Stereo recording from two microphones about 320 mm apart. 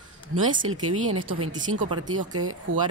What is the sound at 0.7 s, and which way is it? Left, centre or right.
Speech, right.